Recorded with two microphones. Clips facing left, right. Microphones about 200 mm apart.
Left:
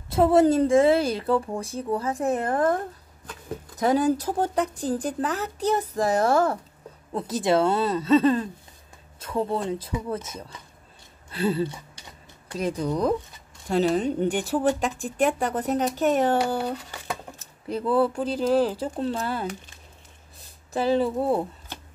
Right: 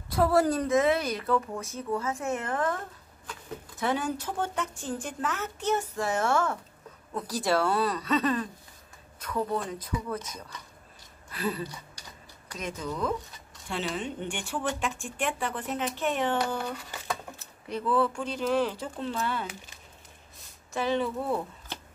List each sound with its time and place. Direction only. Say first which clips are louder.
0.1 s speech: left 6 dB; 25° left (ahead or behind)
7.2 s speech: left 5 dB; 20° left (ahead or behind)